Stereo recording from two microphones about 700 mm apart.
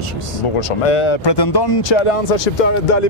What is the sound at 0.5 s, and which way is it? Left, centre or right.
Speech, left.